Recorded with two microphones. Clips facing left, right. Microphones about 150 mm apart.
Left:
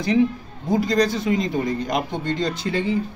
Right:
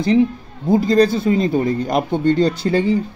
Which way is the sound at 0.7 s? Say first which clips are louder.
Right 6 dB; 25° right (ahead or behind).